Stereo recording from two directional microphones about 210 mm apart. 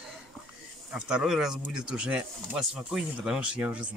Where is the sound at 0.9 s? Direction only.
5° right (ahead or behind).